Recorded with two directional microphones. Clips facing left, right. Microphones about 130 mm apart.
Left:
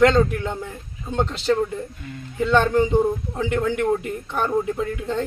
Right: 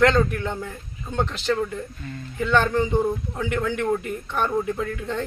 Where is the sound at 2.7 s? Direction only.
5° left (ahead or behind).